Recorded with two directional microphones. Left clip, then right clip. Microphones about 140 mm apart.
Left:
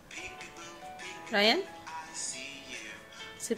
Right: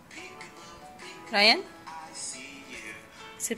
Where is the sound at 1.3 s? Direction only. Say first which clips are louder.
Right 5 dB; 20° left (ahead or behind).